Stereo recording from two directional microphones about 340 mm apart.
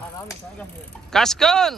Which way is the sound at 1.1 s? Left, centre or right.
Centre.